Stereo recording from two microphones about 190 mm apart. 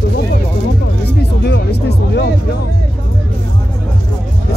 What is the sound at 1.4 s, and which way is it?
Speech, 60° left (ahead or behind).